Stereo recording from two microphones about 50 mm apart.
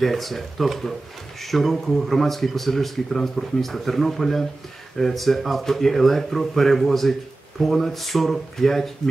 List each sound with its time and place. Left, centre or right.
0.0 s speech: centre